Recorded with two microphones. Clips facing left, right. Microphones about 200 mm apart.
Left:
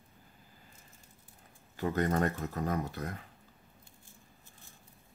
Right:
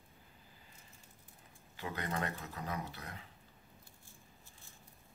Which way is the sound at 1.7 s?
45° left (ahead or behind).